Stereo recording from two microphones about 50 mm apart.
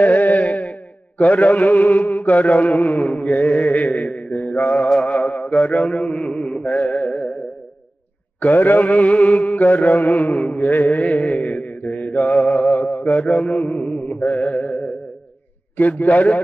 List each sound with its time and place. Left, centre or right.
0.0 s a sound: left
5.0 s mantra: left
8.4 s mantra: left